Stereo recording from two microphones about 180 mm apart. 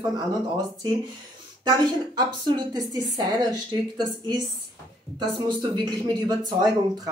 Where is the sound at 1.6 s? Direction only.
25° right (ahead or behind).